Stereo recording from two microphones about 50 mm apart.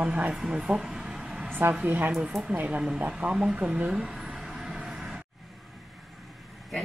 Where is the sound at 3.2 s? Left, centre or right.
Centre.